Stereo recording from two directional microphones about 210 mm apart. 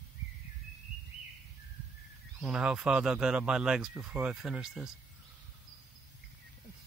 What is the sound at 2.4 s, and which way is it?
Speech, 5° right (ahead or behind).